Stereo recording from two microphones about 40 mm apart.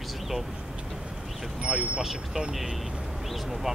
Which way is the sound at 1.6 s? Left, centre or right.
Right.